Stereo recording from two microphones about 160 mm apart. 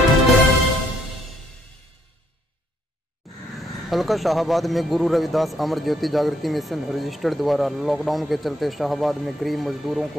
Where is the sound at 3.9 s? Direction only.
Centre (ahead or behind).